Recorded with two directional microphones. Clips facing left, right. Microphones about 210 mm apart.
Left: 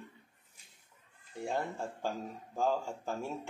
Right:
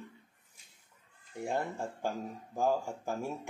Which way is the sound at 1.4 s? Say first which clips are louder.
Right 1 dB; 15° right (ahead or behind).